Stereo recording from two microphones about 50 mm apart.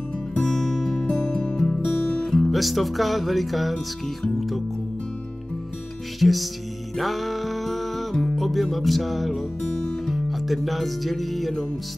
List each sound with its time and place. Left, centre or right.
0.3 s music: centre
2.3 s speech: centre
6.1 s music: centre